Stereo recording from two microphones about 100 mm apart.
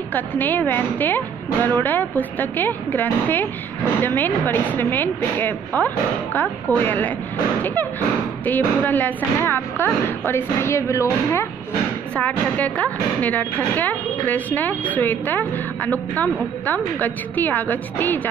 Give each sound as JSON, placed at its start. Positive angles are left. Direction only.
{"t": 0.1, "sound": "a woman's voice", "side_deg": 20}
{"t": 8.5, "sound": "a woman's voice", "side_deg": 20}
{"t": 12.2, "sound": "speech", "side_deg": 15}